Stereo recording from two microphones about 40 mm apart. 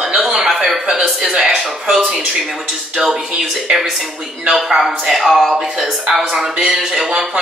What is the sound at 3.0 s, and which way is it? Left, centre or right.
Speech, centre.